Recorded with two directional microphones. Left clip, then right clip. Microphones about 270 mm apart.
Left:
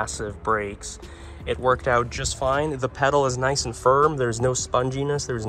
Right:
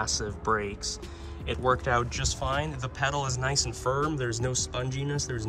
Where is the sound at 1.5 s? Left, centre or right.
Centre.